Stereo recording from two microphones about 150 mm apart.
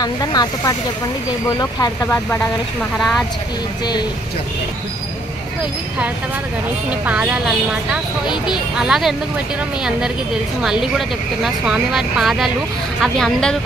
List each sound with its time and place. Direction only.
0.0 s speech: 25° left (ahead or behind)
6.9 s a woman's voice: 10° right (ahead or behind)